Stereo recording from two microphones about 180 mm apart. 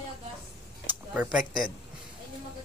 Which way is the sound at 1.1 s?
5° right (ahead or behind).